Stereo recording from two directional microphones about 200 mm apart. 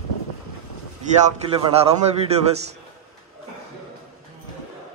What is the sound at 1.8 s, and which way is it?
Speech, 30° right (ahead or behind).